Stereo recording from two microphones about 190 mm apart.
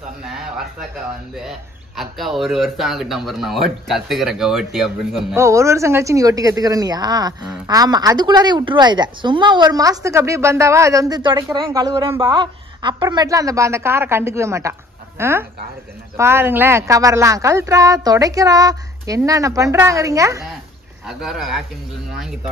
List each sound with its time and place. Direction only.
0.3 s a sound: centre (ahead or behind)
2.0 s speech: centre (ahead or behind)
5.3 s speech: 15° right (ahead or behind)
21.1 s speech: centre (ahead or behind)